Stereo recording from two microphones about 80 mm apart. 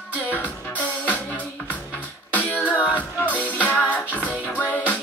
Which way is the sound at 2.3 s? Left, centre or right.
Left.